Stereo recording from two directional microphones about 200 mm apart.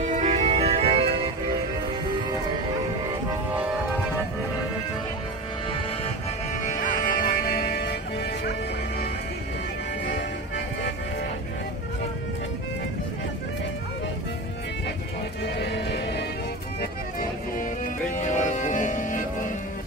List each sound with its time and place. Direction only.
0.0 s music: 35° right (ahead or behind)
6.6 s music: 40° left (ahead or behind)
15.4 s music: 60° left (ahead or behind)
18.2 s music: 40° left (ahead or behind)